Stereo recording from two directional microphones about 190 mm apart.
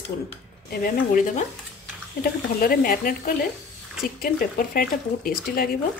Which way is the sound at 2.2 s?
50° left (ahead or behind).